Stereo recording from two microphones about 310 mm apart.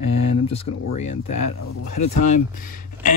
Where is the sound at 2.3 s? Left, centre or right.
Left.